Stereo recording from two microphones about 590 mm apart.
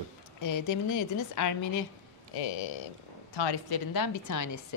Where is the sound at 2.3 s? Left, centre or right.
Left.